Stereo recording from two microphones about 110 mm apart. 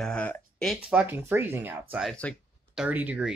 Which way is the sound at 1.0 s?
20° right (ahead or behind).